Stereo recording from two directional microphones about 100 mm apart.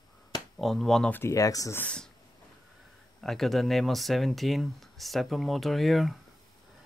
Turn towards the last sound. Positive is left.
turn(degrees=0)  # may be behind; listen again after turning